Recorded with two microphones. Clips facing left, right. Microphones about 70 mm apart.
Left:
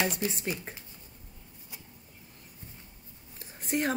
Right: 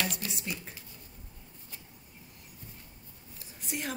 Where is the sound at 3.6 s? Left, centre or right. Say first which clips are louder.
Left 8 dB; left.